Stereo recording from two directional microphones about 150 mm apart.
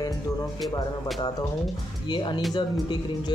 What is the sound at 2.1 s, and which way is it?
Speech, 30° left (ahead or behind).